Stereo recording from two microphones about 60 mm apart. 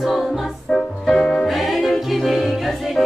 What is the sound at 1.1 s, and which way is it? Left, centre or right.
Music, centre.